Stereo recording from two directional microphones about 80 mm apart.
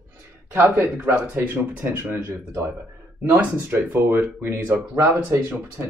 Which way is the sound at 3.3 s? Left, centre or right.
Right.